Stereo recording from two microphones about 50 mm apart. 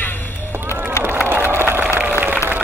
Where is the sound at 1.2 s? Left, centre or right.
Right.